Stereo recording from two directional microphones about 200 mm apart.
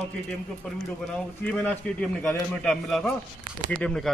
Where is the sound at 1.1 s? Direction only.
5° left (ahead or behind).